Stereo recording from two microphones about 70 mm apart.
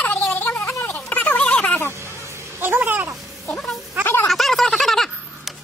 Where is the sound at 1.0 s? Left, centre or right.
Left.